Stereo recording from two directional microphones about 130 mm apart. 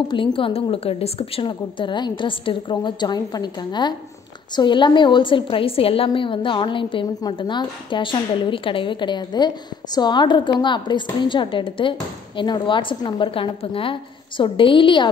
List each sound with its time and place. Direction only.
0.1 s a woman's voice: 40° left (ahead or behind)